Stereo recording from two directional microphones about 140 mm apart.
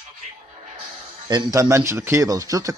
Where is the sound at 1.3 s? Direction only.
25° right (ahead or behind).